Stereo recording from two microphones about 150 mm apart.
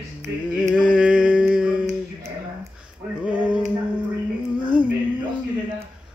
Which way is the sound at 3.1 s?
10° right (ahead or behind).